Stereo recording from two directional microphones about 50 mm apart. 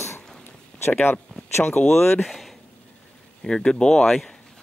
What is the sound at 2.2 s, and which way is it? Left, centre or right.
Speech, centre.